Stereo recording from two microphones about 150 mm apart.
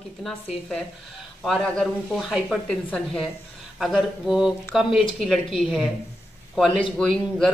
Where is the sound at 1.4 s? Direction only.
Centre (ahead or behind).